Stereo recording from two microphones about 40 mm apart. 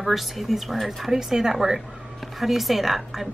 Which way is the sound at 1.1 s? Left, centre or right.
Centre.